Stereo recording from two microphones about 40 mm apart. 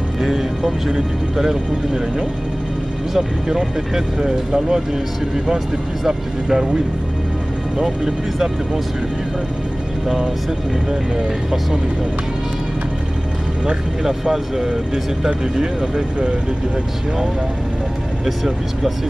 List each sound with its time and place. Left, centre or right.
0.2 s speech: centre
3.4 s speech: centre
6.0 s speech: centre
7.8 s speech: centre
10.0 s speech: centre
14.0 s speech: centre
18.2 s speech: centre